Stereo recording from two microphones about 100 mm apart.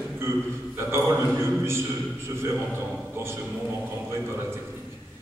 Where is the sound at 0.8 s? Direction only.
25° right (ahead or behind).